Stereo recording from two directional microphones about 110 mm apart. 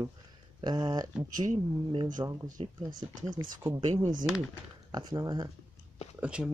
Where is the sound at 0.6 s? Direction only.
40° right (ahead or behind).